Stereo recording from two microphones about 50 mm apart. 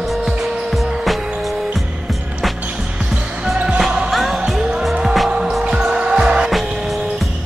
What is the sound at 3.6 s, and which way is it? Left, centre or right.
Basketball bounce, centre.